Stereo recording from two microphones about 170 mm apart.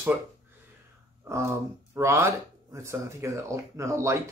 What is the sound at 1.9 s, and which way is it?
Speech, 15° right (ahead or behind).